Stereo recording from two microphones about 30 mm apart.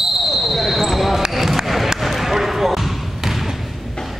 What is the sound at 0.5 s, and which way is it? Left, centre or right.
Basketball bounce, centre.